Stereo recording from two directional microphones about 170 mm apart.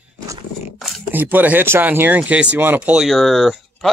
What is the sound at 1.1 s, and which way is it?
Speech, 10° right (ahead or behind).